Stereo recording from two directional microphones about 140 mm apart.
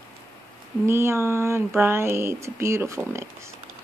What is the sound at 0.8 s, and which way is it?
Speech, 15° right (ahead or behind).